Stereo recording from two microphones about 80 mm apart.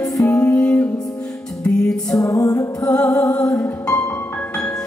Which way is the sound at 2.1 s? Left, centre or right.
Left.